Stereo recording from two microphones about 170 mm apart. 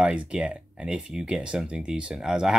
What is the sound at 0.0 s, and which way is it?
Speech, 5° right (ahead or behind).